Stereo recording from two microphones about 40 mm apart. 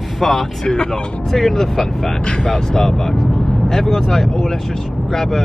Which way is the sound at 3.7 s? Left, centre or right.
Centre.